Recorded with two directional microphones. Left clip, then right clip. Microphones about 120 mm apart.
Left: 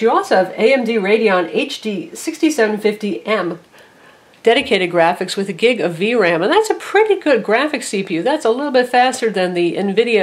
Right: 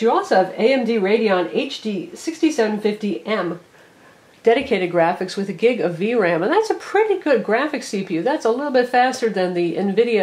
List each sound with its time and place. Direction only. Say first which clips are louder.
0.1 s speech: left 3 dB; 30° left (ahead or behind)
1.8 s speech: left 3 dB; 25° left (ahead or behind)
4.5 s speech: left 3 dB; 25° left (ahead or behind)